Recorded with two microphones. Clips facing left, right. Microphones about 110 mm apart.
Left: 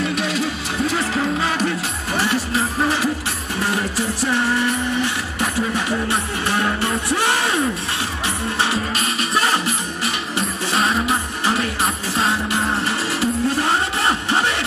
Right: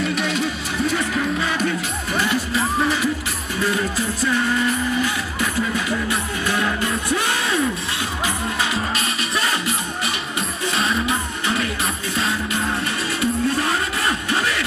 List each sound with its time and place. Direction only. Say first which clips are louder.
0.9 s music: left 1 dB; 30° left (ahead or behind)
5.4 s music: left 2 dB; 30° left (ahead or behind)
8.9 s music: left 3 dB; 30° left (ahead or behind)
10.7 s music: left 2 dB; 35° left (ahead or behind)